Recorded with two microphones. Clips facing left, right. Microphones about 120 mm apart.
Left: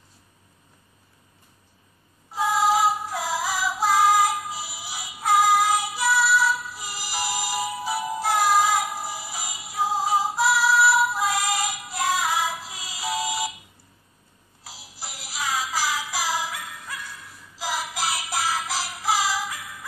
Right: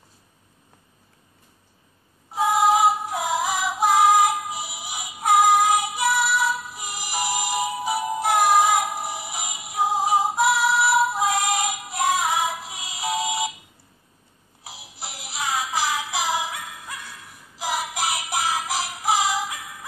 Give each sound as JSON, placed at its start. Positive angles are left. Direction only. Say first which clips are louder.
{"t": 2.3, "sound": "female singing", "louder": "right 2 dB", "side_deg": -20}
{"t": 2.9, "sound": "music", "louder": "right 3 dB", "side_deg": -20}
{"t": 14.6, "sound": "music", "louder": "right 2 dB", "side_deg": -20}